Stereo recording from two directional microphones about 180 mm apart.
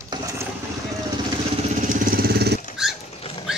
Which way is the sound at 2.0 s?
60° right (ahead or behind).